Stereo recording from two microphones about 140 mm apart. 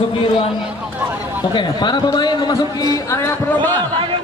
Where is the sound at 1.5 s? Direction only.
30° left (ahead or behind); by 3.8 s 15° left (ahead or behind).